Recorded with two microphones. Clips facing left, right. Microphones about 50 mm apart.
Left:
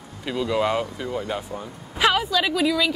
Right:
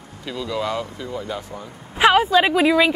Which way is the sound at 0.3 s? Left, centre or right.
Left.